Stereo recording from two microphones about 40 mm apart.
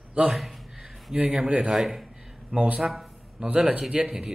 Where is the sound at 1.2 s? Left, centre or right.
Right.